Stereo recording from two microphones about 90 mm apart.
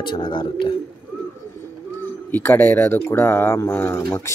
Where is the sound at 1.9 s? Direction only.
25° left (ahead or behind).